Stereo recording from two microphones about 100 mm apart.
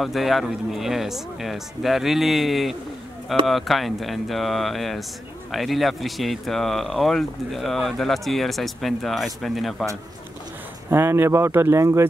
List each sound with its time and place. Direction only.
0.0 s speech: centre (ahead or behind)
10.9 s speech: 25° right (ahead or behind)